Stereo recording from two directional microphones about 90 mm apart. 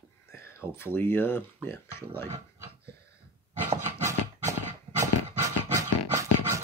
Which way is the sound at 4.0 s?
30° right (ahead or behind).